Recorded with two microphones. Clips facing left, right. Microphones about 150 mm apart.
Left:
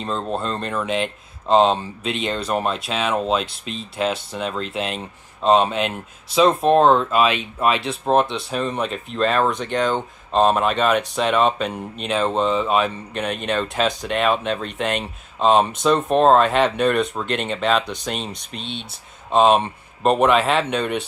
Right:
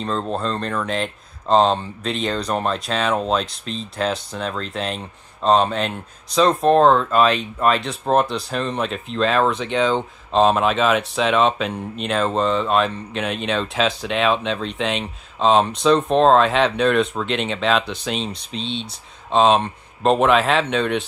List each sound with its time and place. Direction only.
0.0 s speech: 5° left (ahead or behind)
18.5 s speech: 55° left (ahead or behind)
19.3 s speech: 5° left (ahead or behind)